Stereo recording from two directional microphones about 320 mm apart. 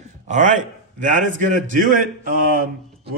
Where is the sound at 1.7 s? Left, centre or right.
Right.